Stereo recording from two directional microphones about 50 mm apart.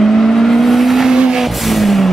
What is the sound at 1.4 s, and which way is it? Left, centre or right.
Vehicle, centre.